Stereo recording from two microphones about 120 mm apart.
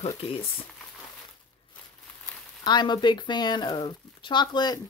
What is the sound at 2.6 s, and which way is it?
Speech, 40° left (ahead or behind).